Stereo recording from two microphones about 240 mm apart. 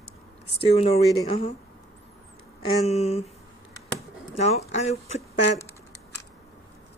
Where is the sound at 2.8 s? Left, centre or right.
Left.